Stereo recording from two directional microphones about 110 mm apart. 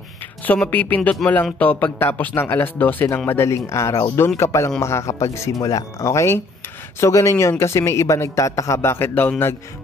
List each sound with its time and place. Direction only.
0.5 s a man's voice: 15° left (ahead or behind)